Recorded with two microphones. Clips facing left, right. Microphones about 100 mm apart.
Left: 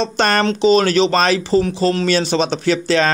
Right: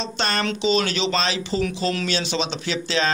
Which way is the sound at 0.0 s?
50° left (ahead or behind).